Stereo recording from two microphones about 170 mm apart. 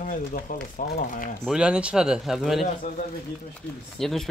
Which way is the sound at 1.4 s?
5° right (ahead or behind).